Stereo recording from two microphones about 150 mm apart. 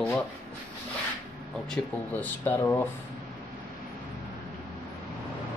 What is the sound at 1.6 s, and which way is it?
Speech, 5° left (ahead or behind).